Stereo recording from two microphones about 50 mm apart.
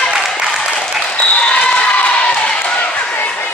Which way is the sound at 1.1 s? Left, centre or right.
Left.